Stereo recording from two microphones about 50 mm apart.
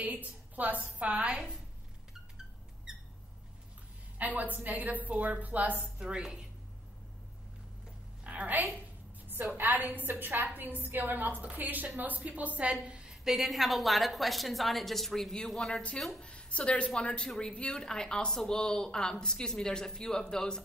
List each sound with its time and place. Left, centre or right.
0.0 s a woman's voice: right
4.2 s a woman's voice: right
5.9 s a woman's voice: centre
8.2 s a woman's voice: right
12.8 s a sound: right
13.2 s a woman's voice: centre
16.2 s a woman's voice: left